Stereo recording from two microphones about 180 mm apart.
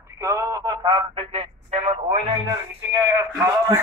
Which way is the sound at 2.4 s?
20° right (ahead or behind).